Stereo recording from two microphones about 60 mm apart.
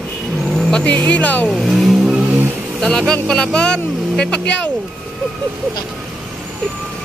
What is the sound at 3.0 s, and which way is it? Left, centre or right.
Speech, centre.